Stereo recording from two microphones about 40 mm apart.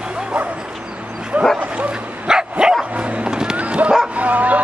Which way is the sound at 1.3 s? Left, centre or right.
Right.